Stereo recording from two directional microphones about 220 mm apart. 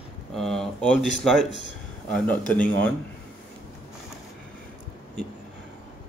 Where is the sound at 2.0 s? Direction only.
5° left (ahead or behind).